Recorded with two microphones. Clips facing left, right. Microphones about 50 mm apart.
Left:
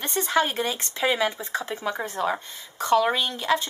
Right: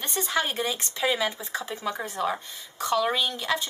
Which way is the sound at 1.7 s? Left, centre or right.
Centre.